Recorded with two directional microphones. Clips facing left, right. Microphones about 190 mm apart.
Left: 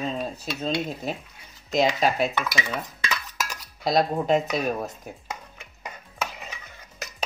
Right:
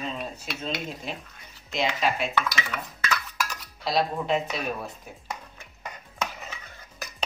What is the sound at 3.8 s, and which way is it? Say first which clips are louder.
Speech: left 4 dB; 45° left (ahead or behind).